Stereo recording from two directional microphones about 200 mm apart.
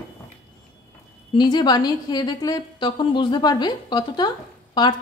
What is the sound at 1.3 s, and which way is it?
A woman's voice, 20° left (ahead or behind).